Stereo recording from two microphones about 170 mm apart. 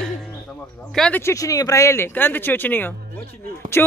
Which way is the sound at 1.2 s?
20° left (ahead or behind).